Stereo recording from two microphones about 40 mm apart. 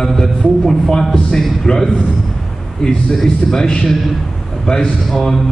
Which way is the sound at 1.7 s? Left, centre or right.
Left.